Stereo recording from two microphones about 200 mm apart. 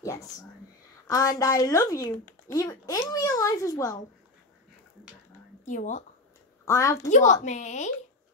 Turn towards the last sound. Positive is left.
turn(degrees=35)  # may be behind; listen again after turning